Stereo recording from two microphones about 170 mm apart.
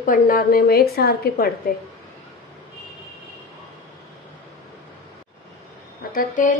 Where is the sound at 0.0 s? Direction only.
55° left (ahead or behind).